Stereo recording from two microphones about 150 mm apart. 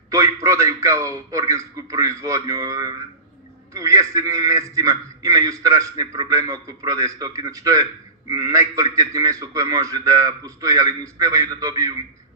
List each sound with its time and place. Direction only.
0.1 s a man's voice: 20° right (ahead or behind)